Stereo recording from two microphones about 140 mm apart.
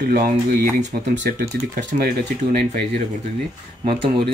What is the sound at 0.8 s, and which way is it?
Speech, 60° right (ahead or behind).